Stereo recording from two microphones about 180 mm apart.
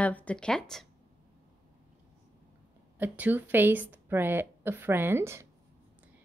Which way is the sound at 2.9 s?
10° right (ahead or behind).